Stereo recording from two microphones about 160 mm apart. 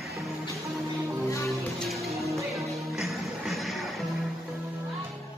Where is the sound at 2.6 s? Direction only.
Centre (ahead or behind).